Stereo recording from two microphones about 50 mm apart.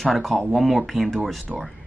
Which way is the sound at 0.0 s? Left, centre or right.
Centre.